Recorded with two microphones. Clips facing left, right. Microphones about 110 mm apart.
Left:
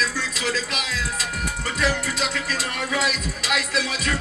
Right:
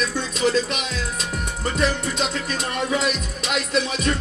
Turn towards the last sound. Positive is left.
turn(degrees=-25)  # may be behind; listen again after turning